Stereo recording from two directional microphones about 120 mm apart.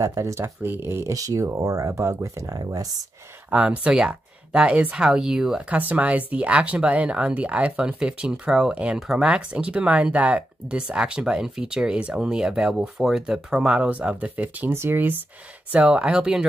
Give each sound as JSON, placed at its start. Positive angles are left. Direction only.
{"t": 0.0, "sound": "speech", "side_deg": -25}
{"t": 3.4, "sound": "speech", "side_deg": -15}